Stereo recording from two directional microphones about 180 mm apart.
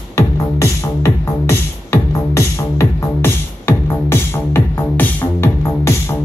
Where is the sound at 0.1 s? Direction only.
15° left (ahead or behind).